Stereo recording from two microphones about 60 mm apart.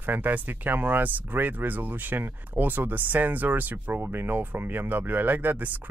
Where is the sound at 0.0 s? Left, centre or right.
Right.